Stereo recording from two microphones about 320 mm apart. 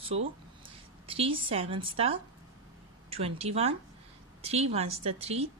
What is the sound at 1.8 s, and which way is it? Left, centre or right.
A woman's voice, centre.